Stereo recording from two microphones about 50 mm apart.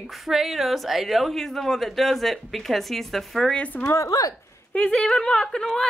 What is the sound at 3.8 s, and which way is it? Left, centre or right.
Speech, left.